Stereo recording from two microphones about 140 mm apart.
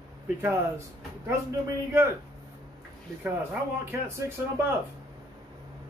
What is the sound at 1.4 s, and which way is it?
Speech, 20° right (ahead or behind).